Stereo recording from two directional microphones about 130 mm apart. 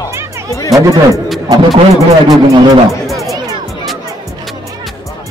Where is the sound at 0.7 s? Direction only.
25° right (ahead or behind).